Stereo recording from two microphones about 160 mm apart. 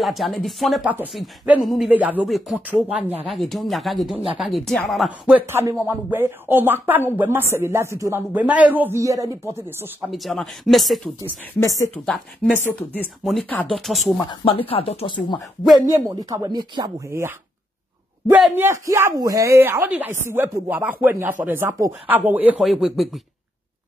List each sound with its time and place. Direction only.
0.0 s speech: centre (ahead or behind)
2.2 s speech: centre (ahead or behind)
5.5 s speech: 15° right (ahead or behind)
10.1 s speech: centre (ahead or behind)
11.2 s speech: 20° left (ahead or behind)
13.2 s speech: centre (ahead or behind)
14.4 s speech: 35° left (ahead or behind)
15.7 s speech: 20° right (ahead or behind)
18.3 s speech: 10° right (ahead or behind)